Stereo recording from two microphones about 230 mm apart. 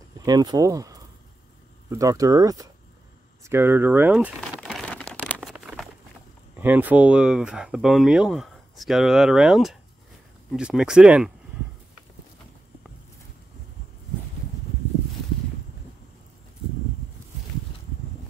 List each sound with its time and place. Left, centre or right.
0.2 s speech: centre
3.4 s crumpling: centre
6.6 s speech: centre